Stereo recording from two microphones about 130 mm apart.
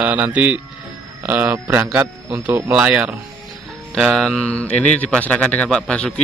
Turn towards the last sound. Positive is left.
turn(degrees=5)  # may be behind; listen again after turning